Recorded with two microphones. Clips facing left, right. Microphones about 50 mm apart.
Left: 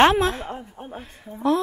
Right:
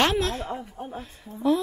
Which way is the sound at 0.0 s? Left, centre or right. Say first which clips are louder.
Left 6 dB; left.